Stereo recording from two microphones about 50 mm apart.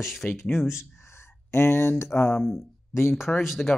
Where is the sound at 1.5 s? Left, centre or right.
Left.